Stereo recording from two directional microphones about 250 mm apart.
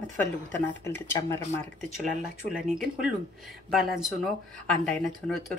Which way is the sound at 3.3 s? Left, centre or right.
Centre.